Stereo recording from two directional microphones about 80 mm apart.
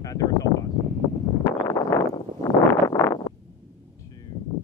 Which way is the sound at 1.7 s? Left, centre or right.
Left.